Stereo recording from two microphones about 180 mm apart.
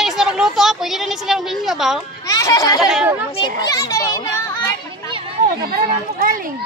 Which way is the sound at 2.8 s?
5° right (ahead or behind).